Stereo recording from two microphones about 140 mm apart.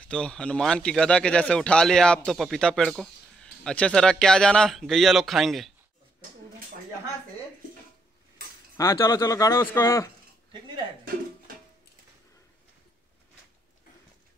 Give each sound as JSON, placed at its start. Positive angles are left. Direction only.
{"t": 0.0, "sound": "speech", "side_deg": 5}
{"t": 8.7, "sound": "speech", "side_deg": 20}